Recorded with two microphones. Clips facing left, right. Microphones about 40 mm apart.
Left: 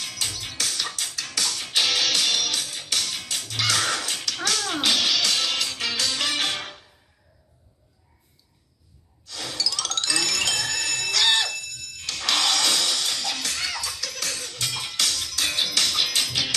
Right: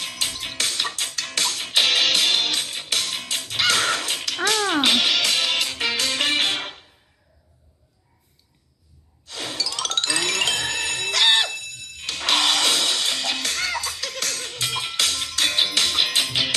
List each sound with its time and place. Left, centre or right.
0.0 s music: right
9.3 s music: right
14.5 s music: right
15.7 s music: right